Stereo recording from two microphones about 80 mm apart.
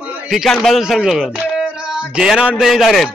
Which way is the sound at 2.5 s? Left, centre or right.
Centre.